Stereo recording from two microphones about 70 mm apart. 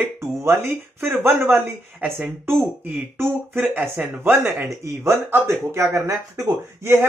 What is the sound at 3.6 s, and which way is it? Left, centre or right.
Speech, right.